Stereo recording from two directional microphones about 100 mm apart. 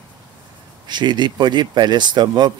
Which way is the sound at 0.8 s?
45° right (ahead or behind).